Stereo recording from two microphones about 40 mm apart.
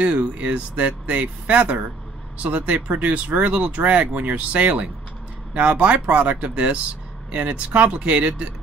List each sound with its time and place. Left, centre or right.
0.0 s speech: right